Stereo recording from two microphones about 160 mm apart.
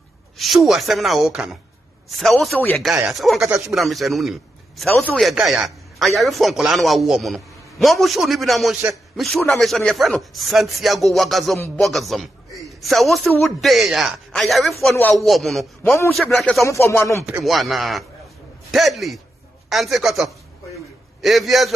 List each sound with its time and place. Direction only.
0.4 s a man's voice: centre (ahead or behind)
3.4 s speech: 15° right (ahead or behind)
3.7 s a man's voice: centre (ahead or behind)
16.6 s speech: 15° left (ahead or behind)
17.3 s a man's voice: centre (ahead or behind)